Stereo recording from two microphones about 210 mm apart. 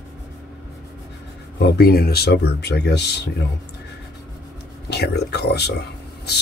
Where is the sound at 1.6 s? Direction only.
50° left (ahead or behind).